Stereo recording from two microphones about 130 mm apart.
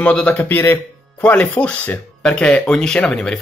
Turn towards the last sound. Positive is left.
turn(degrees=5)  # may be behind; listen again after turning